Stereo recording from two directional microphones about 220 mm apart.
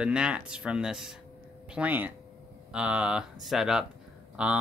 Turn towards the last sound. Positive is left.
turn(degrees=-5)  # may be behind; listen again after turning